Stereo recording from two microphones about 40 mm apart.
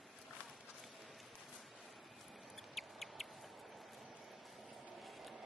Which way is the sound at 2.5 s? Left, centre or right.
Centre.